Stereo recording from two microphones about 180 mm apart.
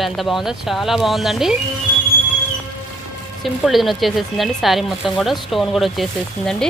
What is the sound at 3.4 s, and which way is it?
Speech, centre (ahead or behind).